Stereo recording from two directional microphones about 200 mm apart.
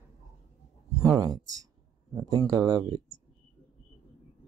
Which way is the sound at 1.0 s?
20° right (ahead or behind).